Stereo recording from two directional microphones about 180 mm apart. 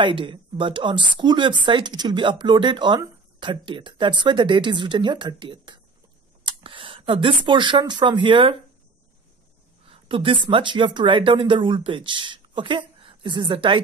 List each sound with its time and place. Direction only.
0.0 s speech: 30° right (ahead or behind)
9.8 s speech: 30° right (ahead or behind)